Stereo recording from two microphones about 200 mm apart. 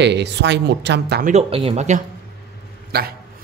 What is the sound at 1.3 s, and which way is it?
Speech, 30° right (ahead or behind).